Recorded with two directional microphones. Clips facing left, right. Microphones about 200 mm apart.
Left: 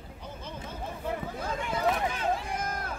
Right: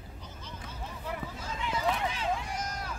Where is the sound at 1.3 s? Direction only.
55° left (ahead or behind).